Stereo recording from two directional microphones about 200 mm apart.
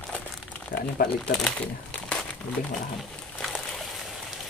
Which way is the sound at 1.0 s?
45° left (ahead or behind).